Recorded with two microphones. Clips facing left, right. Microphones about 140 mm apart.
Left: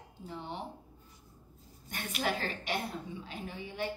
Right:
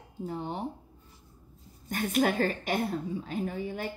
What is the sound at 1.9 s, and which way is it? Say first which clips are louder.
A woman's voice: right 8 dB; 45° right (ahead or behind).